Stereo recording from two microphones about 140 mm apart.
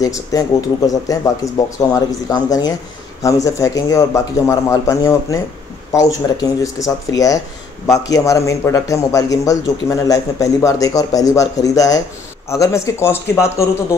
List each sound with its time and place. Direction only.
0.0 s a man's voice: 25° left (ahead or behind)